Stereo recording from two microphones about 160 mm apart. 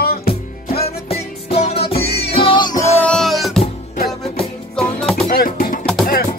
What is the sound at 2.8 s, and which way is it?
Music, 10° left (ahead or behind).